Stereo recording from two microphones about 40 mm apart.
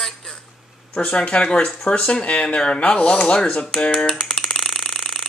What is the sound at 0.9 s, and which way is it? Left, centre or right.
Speech, left.